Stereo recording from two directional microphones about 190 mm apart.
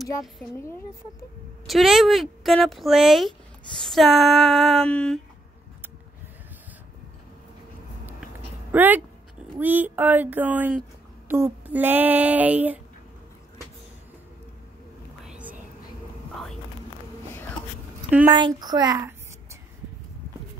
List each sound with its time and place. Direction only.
1.7 s speech: centre (ahead or behind)
8.7 s female singing: 10° right (ahead or behind)
15.2 s a sound: 5° right (ahead or behind)
18.3 s a child's voice: 25° right (ahead or behind)